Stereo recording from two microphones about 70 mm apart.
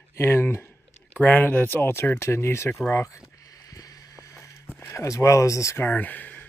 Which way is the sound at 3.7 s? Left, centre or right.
Left.